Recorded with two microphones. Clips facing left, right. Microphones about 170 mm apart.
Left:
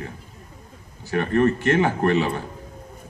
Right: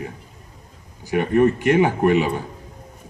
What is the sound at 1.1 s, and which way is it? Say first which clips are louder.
Speech: right 3 dB; 15° right (ahead or behind).